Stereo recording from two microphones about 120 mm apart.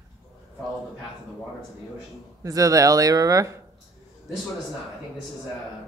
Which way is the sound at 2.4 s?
30° right (ahead or behind).